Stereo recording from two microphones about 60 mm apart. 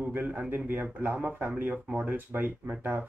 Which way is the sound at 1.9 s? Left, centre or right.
Right.